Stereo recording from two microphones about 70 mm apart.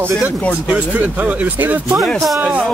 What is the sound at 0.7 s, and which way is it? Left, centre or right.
Speech, right.